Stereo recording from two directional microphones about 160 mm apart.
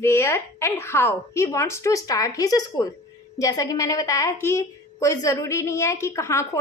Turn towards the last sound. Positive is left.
turn(degrees=20)  # may be behind; listen again after turning